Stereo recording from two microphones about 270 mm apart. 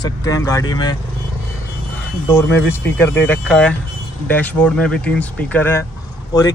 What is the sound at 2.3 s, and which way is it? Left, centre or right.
Speech, centre.